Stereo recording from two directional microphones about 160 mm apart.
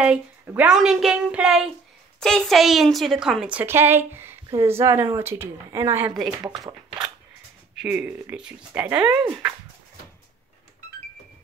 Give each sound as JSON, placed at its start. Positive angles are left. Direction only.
{"t": 0.0, "sound": "a woman's voice", "side_deg": -10}
{"t": 7.8, "sound": "speech", "side_deg": -10}